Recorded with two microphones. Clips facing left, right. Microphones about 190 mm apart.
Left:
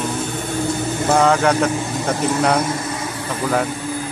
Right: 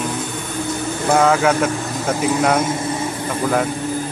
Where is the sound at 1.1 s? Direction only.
5° right (ahead or behind).